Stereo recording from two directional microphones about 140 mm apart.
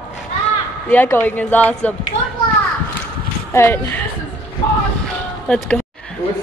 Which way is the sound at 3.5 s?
15° left (ahead or behind).